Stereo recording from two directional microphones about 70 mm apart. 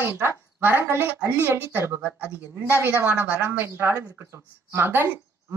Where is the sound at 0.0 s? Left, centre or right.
Right.